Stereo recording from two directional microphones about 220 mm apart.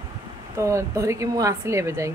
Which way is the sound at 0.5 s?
15° right (ahead or behind).